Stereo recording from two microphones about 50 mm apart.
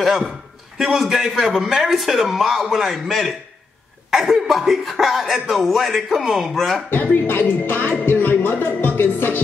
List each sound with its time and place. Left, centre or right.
0.7 s speech: centre
7.2 s a woman's voice: left
8.0 s music: left